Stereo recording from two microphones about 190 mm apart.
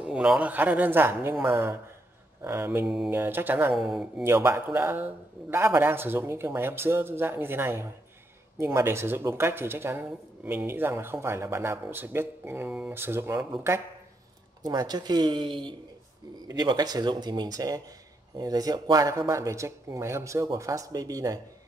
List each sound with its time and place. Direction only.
0.0 s speech: 5° right (ahead or behind)
4.2 s speech: 15° right (ahead or behind)